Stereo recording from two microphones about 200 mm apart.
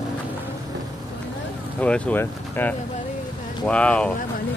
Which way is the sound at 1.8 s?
5° left (ahead or behind).